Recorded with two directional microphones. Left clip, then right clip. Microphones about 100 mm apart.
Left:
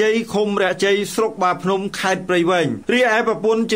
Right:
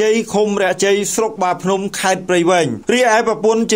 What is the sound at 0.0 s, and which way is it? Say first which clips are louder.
Speech: right 3 dB; 25° right (ahead or behind).